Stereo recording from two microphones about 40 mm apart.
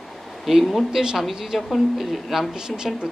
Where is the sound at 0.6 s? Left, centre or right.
Centre.